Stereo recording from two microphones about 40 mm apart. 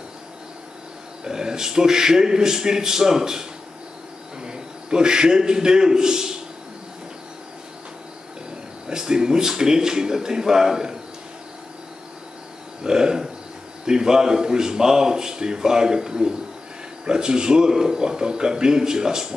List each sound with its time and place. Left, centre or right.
1.2 s a man's voice: centre
8.8 s a man's voice: centre
12.8 s a sound: centre
13.8 s a man's voice: centre